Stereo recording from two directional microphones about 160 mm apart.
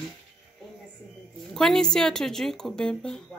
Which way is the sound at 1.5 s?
5° left (ahead or behind).